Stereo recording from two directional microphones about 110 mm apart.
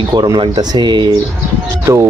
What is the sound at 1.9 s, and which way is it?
Speech, 30° right (ahead or behind).